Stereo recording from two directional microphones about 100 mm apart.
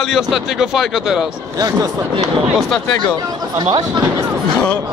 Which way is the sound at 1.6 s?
40° right (ahead or behind).